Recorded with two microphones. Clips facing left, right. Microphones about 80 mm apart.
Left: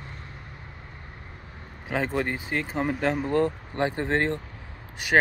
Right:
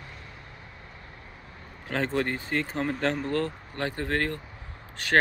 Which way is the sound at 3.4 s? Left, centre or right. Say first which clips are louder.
Left 6 dB; left.